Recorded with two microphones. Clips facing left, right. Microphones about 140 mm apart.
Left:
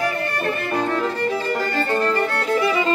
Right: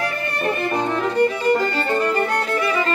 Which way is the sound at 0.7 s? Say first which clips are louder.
Right 3 dB; 20° right (ahead or behind).